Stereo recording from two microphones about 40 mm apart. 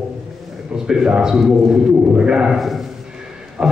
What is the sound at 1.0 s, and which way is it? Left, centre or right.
A man's voice, centre.